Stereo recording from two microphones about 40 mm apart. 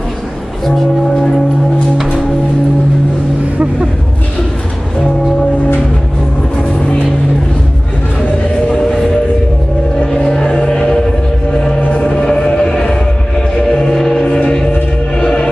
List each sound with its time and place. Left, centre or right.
0.7 s music: centre
8.6 s music: centre
9.9 s vehicle: left
10.4 s music: centre
12.0 s music: centre